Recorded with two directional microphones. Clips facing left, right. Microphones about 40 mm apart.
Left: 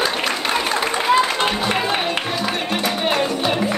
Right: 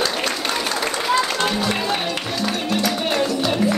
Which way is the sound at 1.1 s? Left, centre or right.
Left.